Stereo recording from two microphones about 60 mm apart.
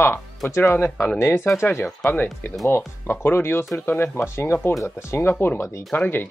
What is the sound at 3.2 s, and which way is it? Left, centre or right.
Speech, left.